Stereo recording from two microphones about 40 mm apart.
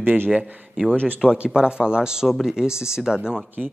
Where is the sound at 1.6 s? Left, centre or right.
Right.